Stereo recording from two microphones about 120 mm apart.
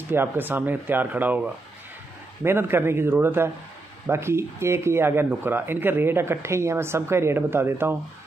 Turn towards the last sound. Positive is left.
turn(degrees=-20)  # may be behind; listen again after turning